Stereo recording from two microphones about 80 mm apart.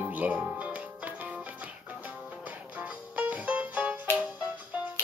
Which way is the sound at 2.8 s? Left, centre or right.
Centre.